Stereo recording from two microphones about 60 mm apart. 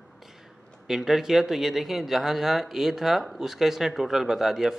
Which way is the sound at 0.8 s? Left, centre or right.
Centre.